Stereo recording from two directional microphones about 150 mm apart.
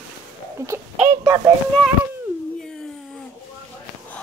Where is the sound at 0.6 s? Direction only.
20° right (ahead or behind).